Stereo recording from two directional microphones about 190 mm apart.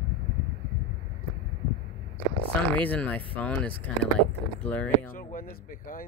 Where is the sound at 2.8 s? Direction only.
10° left (ahead or behind).